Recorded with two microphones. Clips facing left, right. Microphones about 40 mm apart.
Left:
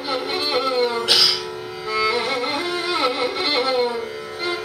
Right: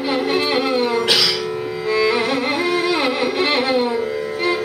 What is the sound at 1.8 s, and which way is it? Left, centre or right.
Music, right.